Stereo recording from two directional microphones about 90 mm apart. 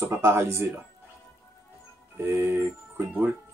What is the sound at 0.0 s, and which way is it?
Speech, 30° right (ahead or behind).